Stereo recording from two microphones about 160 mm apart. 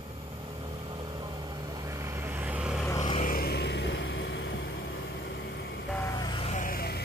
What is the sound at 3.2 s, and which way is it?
Vehicle, 65° left (ahead or behind).